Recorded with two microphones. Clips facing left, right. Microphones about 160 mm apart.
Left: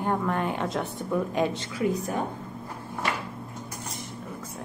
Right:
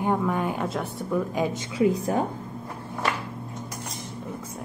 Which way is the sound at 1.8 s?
30° right (ahead or behind).